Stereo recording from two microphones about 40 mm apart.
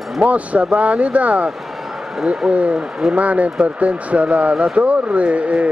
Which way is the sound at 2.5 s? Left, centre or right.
Right.